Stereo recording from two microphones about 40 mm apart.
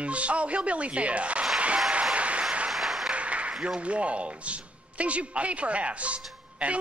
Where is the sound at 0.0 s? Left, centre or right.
Right.